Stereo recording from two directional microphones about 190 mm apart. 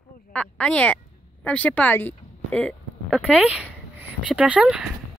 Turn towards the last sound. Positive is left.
turn(degrees=-5)  # may be behind; listen again after turning